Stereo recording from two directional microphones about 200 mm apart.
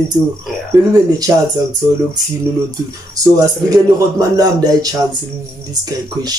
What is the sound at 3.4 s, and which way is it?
Speech, 15° right (ahead or behind).